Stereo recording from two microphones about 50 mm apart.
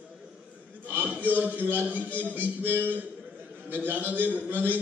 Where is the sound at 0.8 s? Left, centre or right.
Right.